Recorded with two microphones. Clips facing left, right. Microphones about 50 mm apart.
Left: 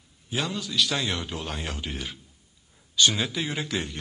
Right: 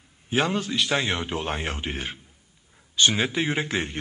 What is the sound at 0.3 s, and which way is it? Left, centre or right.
A man's voice, right.